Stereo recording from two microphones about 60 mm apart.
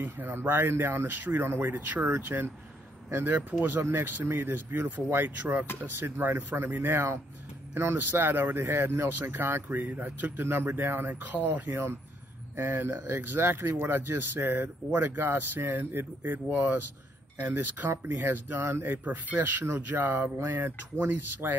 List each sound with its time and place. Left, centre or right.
0.0 s speech: right
11.1 s speech: right
18.9 s speech: right